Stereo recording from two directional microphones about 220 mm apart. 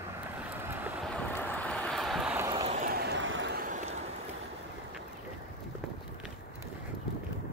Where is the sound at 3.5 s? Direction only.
35° right (ahead or behind).